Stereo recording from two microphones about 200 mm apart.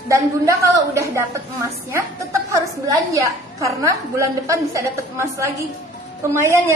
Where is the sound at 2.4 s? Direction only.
15° right (ahead or behind).